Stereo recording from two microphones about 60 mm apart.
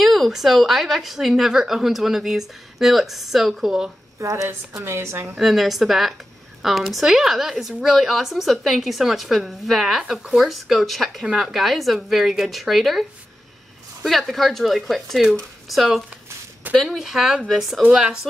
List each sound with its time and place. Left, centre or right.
0.0 s speech: centre
4.2 s a woman's voice: right
5.4 s speech: centre
14.0 s speech: centre